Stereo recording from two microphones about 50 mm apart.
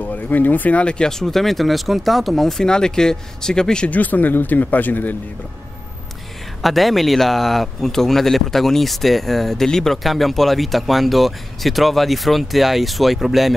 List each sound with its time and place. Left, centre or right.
0.0 s speech: left; by 1.1 s centre
1.2 s speech: centre
3.9 s speech: left
6.6 s speech: centre